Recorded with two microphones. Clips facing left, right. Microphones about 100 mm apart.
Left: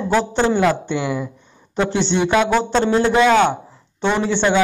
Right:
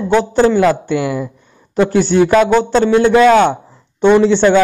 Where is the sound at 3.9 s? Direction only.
15° right (ahead or behind).